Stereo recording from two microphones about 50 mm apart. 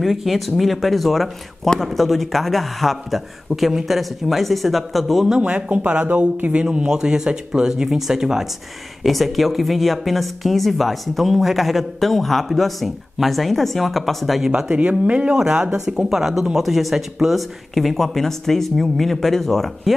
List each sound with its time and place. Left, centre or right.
0.0 s speech: centre
5.4 s speech: right
9.0 s speech: centre
14.7 s speech: right
15.3 s speech: centre